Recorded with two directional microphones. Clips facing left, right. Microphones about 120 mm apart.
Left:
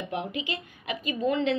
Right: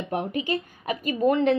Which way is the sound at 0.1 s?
45° right (ahead or behind).